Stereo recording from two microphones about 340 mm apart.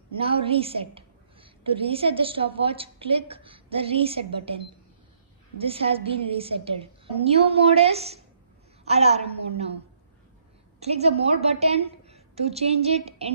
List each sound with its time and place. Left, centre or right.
0.2 s a woman's voice: centre
5.6 s a woman's voice: centre
10.8 s a woman's voice: centre